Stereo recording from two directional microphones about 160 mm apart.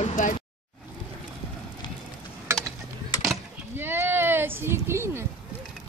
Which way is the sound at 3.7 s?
15° right (ahead or behind).